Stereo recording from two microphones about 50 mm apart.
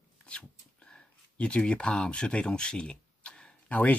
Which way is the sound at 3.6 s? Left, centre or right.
Left.